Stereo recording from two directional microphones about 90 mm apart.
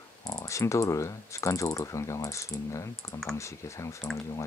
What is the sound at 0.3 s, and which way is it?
Speech, 35° left (ahead or behind).